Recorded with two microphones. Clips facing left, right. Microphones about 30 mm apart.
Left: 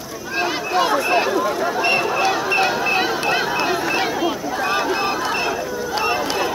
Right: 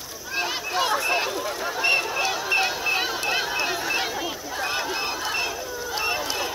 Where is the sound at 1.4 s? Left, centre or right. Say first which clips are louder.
Left 5 dB; left.